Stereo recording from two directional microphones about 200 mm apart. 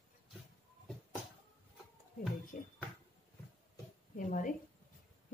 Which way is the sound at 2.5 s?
40° left (ahead or behind).